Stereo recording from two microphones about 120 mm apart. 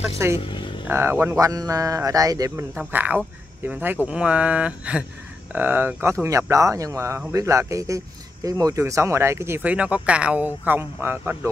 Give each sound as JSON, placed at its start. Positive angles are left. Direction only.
{"t": 0.4, "sound": "vehicle", "side_deg": 45}
{"t": 0.8, "sound": "speech", "side_deg": -20}
{"t": 2.9, "sound": "speech", "side_deg": -15}